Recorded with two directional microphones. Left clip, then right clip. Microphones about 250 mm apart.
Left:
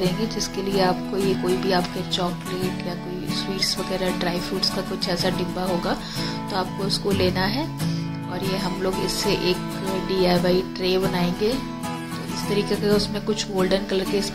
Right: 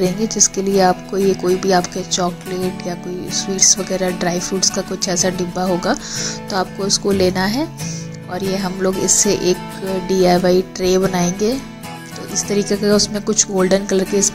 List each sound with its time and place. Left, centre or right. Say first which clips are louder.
0.0 s speech: right 8 dB; right
3.3 s speech: right 10 dB; centre